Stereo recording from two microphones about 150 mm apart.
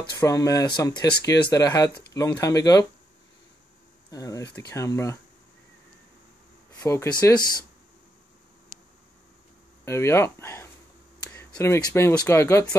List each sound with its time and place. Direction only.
0.2 s speech: 20° left (ahead or behind)
4.1 s speech: 20° left (ahead or behind)
6.8 s speech: 15° left (ahead or behind)
7.1 s speech: 30° left (ahead or behind)
9.8 s speech: 15° left (ahead or behind)